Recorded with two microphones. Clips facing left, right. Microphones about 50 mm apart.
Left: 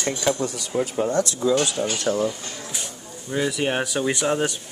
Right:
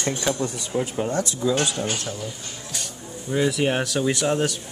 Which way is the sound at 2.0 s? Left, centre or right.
Left.